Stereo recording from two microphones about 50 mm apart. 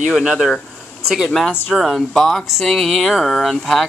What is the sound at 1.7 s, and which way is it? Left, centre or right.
Speech, centre.